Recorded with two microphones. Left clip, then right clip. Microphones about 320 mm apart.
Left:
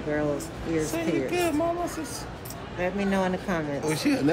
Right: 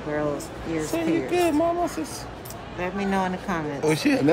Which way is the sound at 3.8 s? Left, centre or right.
Right.